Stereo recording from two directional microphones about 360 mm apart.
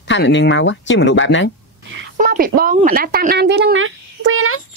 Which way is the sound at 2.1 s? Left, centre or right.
Right.